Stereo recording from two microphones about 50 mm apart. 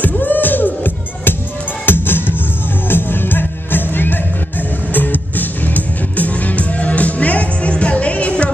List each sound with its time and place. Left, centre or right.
0.0 s music: left